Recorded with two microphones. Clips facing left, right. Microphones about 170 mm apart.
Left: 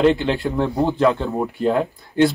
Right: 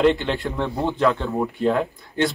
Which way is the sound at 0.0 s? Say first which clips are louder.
Left 2 dB; centre (ahead or behind).